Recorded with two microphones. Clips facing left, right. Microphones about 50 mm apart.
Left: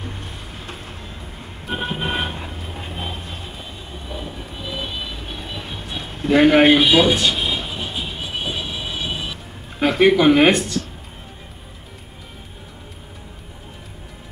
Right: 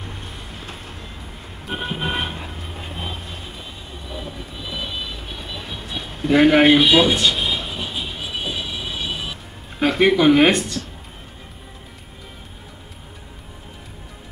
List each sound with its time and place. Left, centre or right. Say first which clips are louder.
1.8 s vehicle: left 1 dB; centre
2.2 s vehicle: left 1 dB; centre
6.2 s speech: left 1 dB; centre
8.2 s music: left 1 dB; centre
8.8 s vehicle: left 1 dB; centre
9.8 s speech: left 1 dB; centre